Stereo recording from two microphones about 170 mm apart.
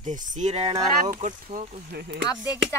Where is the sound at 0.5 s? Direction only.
35° right (ahead or behind).